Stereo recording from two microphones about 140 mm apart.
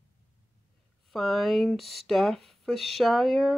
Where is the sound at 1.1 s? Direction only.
Centre (ahead or behind).